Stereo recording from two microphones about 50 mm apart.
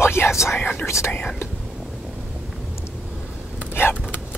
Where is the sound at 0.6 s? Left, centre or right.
Left.